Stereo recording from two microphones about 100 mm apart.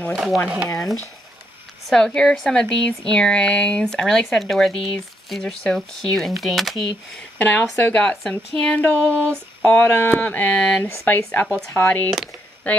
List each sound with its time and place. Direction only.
0.1 s speech: 5° right (ahead or behind)
1.9 s a woman's voice: 5° left (ahead or behind)
7.3 s a woman's voice: 15° left (ahead or behind)
9.1 s a sound: 20° right (ahead or behind)
9.6 s a woman's voice: 10° left (ahead or behind)
10.8 s speech: 20° left (ahead or behind)